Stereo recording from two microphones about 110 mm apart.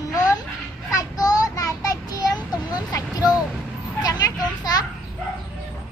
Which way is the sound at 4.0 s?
40° left (ahead or behind).